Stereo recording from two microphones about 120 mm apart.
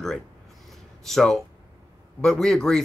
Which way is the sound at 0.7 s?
Centre (ahead or behind).